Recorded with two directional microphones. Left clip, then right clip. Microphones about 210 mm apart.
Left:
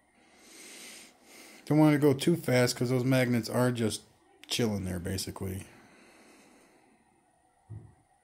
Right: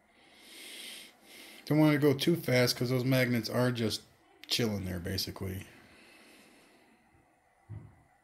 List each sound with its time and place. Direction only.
0.4 s speech: 20° left (ahead or behind)